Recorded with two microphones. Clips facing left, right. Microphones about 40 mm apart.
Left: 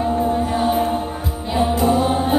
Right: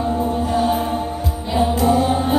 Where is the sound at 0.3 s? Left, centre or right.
Centre.